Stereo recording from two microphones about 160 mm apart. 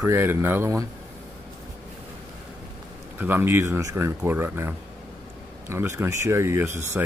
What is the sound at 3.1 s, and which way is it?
Speech, 15° right (ahead or behind).